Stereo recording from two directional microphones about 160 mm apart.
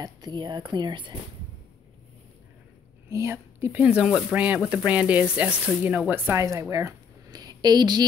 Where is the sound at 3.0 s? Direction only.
15° right (ahead or behind).